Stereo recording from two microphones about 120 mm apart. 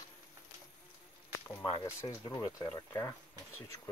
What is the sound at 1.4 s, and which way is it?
Speech, 25° left (ahead or behind).